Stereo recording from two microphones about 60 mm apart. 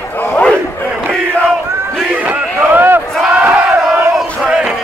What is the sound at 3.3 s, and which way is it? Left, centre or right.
Battle cry, right.